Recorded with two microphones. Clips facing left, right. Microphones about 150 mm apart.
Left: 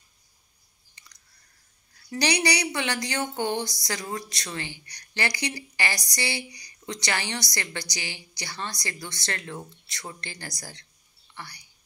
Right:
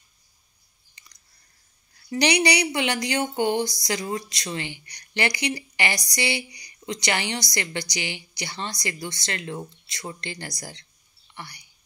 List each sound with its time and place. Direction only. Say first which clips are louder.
2.0 s a woman's voice: right 4 dB; 20° right (ahead or behind)